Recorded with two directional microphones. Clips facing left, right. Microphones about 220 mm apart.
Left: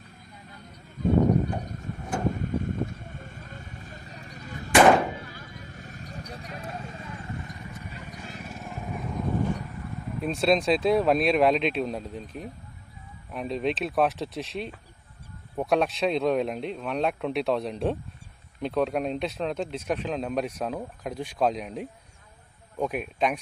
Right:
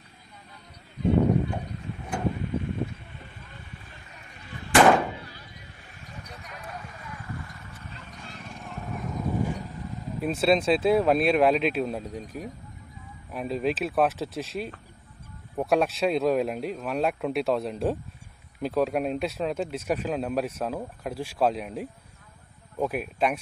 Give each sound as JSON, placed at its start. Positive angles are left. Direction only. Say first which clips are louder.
{"t": 1.4, "sound": "a sound", "louder": "left 1 dB", "side_deg": 45}
{"t": 2.3, "sound": "vehicle", "louder": "left 1 dB", "side_deg": 45}
{"t": 9.4, "sound": "vehicle", "louder": "left 1 dB", "side_deg": -10}
{"t": 10.2, "sound": "speech", "louder": "right 1 dB", "side_deg": -5}